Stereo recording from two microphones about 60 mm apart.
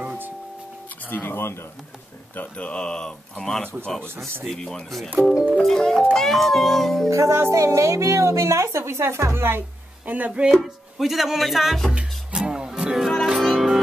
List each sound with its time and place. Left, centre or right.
0.0 s music: right
1.0 s speech: left
2.5 s speech: centre
7.1 s a woman's voice: right
10.0 s speech: right
10.5 s speech: centre
11.9 s music: centre
13.0 s music: centre